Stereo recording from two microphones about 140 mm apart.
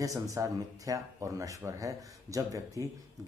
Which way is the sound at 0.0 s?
25° right (ahead or behind).